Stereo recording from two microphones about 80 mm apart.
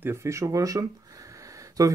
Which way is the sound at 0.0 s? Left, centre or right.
Right.